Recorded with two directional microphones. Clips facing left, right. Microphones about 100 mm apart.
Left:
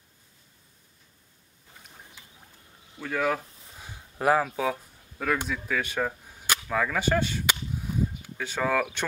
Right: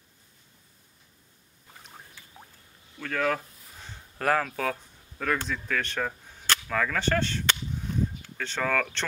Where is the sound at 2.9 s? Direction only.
10° left (ahead or behind).